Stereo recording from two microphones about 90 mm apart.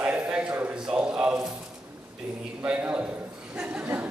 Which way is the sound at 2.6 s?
15° right (ahead or behind).